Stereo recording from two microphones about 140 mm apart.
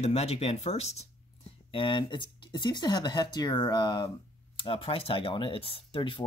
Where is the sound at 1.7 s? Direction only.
35° left (ahead or behind).